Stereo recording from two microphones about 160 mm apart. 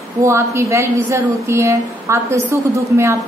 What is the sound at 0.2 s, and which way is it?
A woman's voice, 20° right (ahead or behind).